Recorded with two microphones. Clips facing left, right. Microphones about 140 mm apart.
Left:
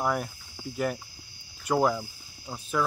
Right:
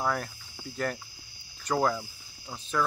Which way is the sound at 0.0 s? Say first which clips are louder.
Left 2 dB; 10° left (ahead or behind).